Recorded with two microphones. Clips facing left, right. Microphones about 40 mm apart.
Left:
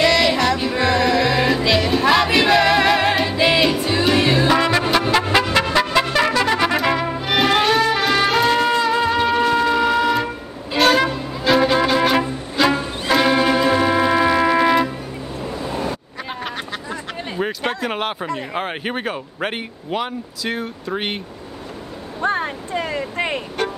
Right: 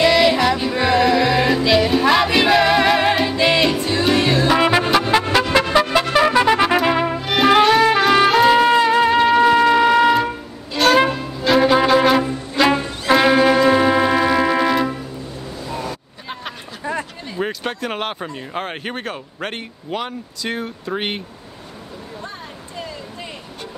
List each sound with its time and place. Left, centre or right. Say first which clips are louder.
0.0 s music: right 2 dB; centre
4.6 s music: right 2 dB; centre
4.8 s music: right 1 dB; centre
6.3 s trumpet: right 3 dB; centre
7.2 s music: right 5 dB; centre
10.8 s music: left 1 dB; centre
11.4 s music: right 2 dB; centre
13.1 s brass instrument: right 3 dB; centre
15.6 s vehicle: left 2 dB; left
17.4 s a sound: left 1 dB; centre
18.5 s speech: left 2 dB; centre
22.2 s a sound: left 12 dB; left